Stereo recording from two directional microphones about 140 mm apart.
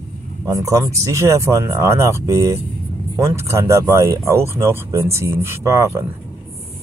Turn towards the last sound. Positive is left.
turn(degrees=-20)  # may be behind; listen again after turning